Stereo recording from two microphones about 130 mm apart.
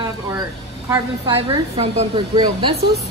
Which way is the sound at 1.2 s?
35° right (ahead or behind).